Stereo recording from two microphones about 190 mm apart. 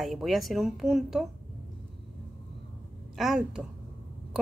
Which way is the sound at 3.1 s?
Centre (ahead or behind).